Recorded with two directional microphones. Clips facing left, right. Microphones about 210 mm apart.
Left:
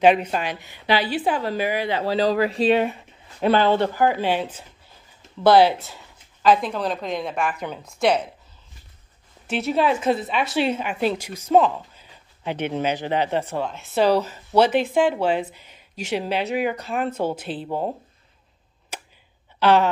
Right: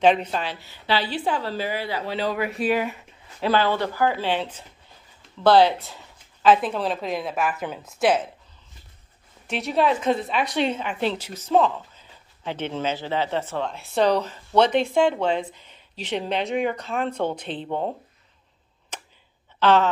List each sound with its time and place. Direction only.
0.0 s speech: 10° left (ahead or behind)
2.0 s a man's voice: 35° left (ahead or behind)
3.3 s a woman's voice: 25° left (ahead or behind); by 8.2 s 5° right (ahead or behind)
9.5 s speech: centre (ahead or behind)
18.9 s a sound: 10° left (ahead or behind)
19.6 s speech: 10° left (ahead or behind)